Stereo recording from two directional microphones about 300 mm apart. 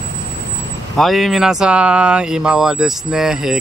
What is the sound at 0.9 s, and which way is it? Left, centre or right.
Speech, centre.